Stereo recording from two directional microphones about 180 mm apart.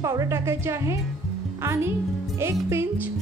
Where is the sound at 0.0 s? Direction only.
15° right (ahead or behind).